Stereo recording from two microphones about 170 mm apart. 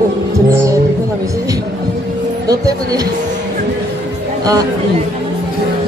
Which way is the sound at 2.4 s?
20° right (ahead or behind).